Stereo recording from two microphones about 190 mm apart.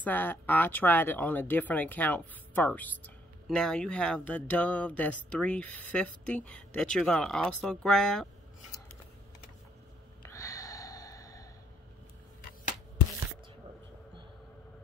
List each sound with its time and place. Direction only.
0.0 s speech: 10° left (ahead or behind)
10.3 s snort: 15° left (ahead or behind)